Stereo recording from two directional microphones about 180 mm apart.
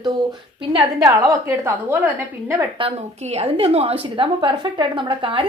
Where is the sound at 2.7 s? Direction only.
35° right (ahead or behind).